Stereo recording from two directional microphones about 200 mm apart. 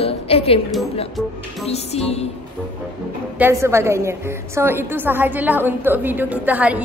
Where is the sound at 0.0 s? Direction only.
30° left (ahead or behind).